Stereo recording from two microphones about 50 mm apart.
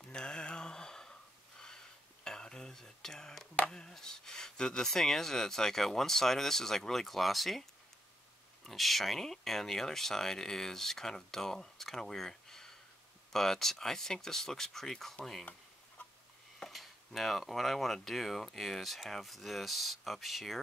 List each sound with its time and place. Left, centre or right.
0.1 s mantra: centre
2.2 s whispering: centre
3.6 s chopping: centre
3.9 s speech: centre
8.6 s speech: centre
16.5 s speech: centre